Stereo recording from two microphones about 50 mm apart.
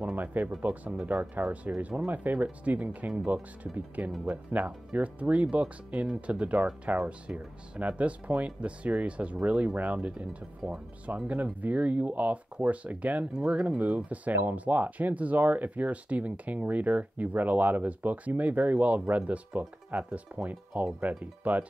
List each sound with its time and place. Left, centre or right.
0.1 s speech: right
11.1 s speech: right
11.6 s speech: right